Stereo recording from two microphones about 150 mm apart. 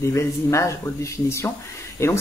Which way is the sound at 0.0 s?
20° left (ahead or behind).